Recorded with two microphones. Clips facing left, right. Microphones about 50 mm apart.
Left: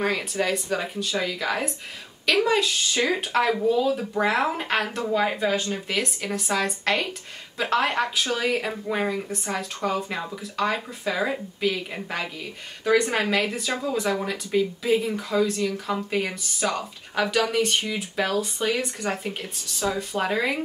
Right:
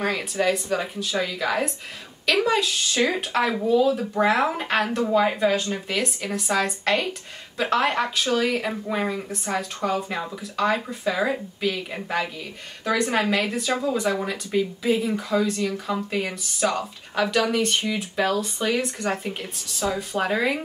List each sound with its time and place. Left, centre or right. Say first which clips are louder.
0.0 s speech: right 1 dB; centre